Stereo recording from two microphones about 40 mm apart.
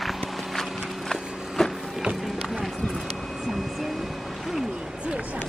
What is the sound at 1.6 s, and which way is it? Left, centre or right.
Printer, centre.